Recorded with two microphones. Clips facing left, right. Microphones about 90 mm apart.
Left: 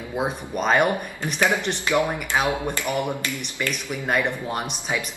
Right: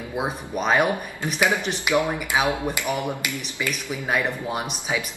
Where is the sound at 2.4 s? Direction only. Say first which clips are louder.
Even; 15° right (ahead or behind).